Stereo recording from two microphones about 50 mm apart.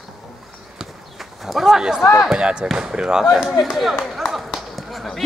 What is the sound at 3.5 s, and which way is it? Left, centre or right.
Speech, centre.